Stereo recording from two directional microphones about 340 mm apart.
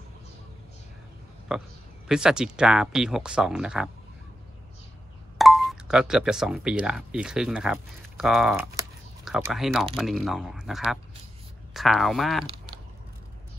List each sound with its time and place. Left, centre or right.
1.5 s speech: centre
5.4 s speech: centre